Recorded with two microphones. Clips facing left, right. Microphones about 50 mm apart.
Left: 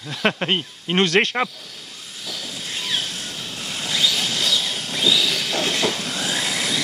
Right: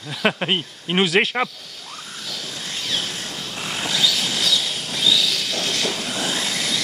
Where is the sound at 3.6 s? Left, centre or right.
Right.